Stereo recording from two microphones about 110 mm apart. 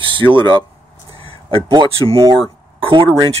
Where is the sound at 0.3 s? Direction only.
45° right (ahead or behind).